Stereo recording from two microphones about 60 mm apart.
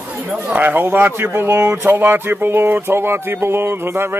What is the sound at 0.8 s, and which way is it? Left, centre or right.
Speech, right.